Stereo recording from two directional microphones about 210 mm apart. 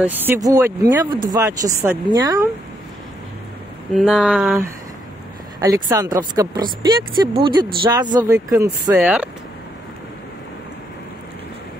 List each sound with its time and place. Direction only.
0.0 s speech: 10° right (ahead or behind)
3.9 s speech: 5° right (ahead or behind)
5.6 s speech: 15° right (ahead or behind)